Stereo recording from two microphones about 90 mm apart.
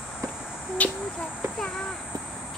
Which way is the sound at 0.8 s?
15° left (ahead or behind).